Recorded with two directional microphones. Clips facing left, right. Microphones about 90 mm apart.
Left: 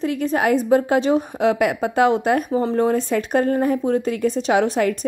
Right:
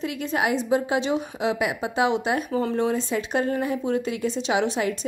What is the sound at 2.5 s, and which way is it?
A woman's voice, 35° left (ahead or behind).